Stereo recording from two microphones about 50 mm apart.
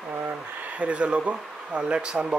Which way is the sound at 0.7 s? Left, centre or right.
Right.